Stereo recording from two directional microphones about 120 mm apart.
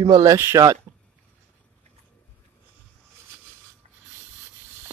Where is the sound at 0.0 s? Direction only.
30° right (ahead or behind).